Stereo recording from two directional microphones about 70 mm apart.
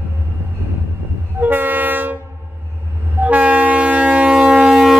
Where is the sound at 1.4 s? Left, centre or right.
Right.